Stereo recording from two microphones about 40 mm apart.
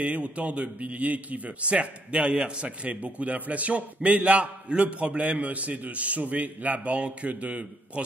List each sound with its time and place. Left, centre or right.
0.0 s a man's voice: right